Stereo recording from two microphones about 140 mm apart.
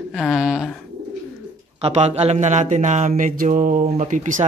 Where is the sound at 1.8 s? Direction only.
50° right (ahead or behind).